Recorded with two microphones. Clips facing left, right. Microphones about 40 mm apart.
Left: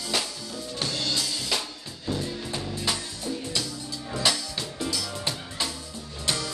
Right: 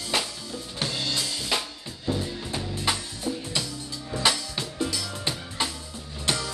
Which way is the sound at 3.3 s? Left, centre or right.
Centre.